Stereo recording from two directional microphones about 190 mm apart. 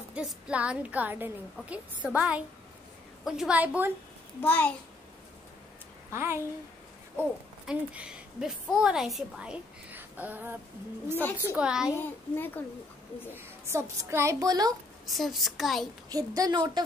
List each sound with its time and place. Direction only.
0.1 s a woman's voice: 5° right (ahead or behind)
4.4 s a child's voice: 10° left (ahead or behind)
6.1 s a woman's voice: 15° right (ahead or behind)
11.1 s a child's voice: 10° left (ahead or behind)
11.5 s a woman's voice: 5° right (ahead or behind)
11.9 s a child's voice: 10° left (ahead or behind)
13.7 s a woman's voice: 15° right (ahead or behind)
15.0 s a woman's voice: centre (ahead or behind)
16.1 s a woman's voice: 20° right (ahead or behind)